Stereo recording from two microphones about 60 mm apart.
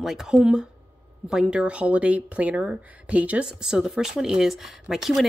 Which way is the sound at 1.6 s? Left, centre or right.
Right.